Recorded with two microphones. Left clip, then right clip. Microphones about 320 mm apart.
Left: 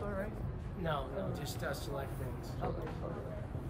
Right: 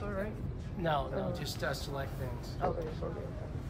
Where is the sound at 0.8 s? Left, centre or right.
Right.